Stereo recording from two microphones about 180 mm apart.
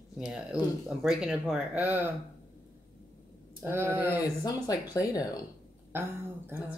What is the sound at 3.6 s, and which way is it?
Speech, 10° right (ahead or behind).